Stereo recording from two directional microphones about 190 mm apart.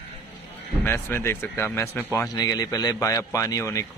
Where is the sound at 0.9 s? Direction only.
10° left (ahead or behind).